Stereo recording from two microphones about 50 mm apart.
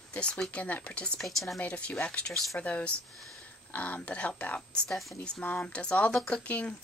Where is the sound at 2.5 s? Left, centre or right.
Left.